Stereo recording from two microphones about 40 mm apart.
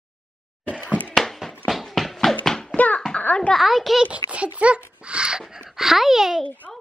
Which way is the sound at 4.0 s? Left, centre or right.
Right.